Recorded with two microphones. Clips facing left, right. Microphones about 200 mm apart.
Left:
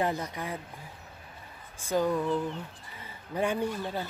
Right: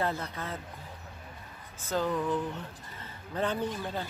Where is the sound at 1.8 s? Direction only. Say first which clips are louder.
Left 3 dB; 10° left (ahead or behind).